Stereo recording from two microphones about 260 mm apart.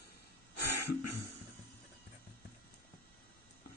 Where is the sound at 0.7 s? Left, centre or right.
Left.